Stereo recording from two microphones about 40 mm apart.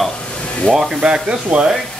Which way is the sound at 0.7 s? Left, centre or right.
Left.